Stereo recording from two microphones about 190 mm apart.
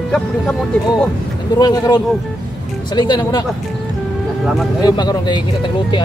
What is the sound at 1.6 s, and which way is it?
Speech, 20° left (ahead or behind).